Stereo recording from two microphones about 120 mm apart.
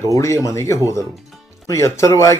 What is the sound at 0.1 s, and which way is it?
Speech, 25° left (ahead or behind).